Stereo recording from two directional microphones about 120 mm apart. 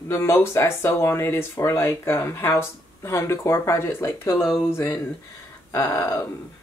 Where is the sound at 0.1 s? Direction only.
20° left (ahead or behind).